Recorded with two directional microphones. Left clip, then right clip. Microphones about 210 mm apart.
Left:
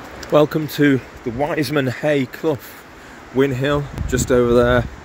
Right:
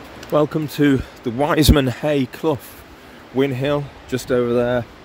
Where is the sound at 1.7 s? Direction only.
15° right (ahead or behind).